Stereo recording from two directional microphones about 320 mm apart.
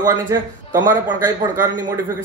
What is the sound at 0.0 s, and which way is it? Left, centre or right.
Speech, centre.